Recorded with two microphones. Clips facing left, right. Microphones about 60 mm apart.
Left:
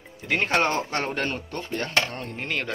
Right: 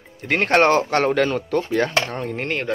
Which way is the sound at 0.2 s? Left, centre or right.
Right.